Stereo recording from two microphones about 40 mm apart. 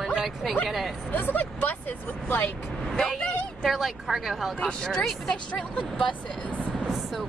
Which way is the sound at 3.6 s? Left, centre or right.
Centre.